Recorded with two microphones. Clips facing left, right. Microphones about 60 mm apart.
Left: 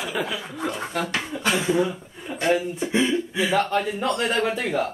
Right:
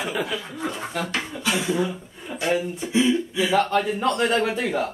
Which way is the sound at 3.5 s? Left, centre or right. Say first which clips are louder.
Right 2 dB; centre.